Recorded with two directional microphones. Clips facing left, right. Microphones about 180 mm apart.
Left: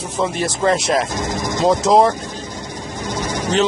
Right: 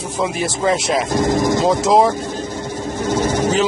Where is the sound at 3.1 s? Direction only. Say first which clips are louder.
Right 6 dB; 50° right (ahead or behind).